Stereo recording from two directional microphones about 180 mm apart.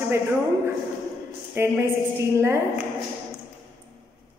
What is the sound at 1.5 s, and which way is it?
Speech, 10° right (ahead or behind).